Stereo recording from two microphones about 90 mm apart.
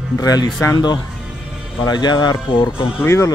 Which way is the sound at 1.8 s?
50° left (ahead or behind).